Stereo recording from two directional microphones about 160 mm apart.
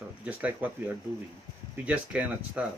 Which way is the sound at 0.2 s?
10° right (ahead or behind).